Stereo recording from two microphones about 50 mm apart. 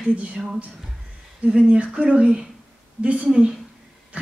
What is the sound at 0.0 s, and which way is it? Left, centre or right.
Speech, right.